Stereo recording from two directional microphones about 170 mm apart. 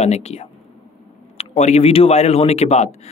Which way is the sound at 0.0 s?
40° left (ahead or behind).